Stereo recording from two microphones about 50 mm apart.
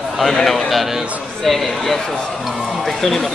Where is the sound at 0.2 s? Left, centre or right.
Centre.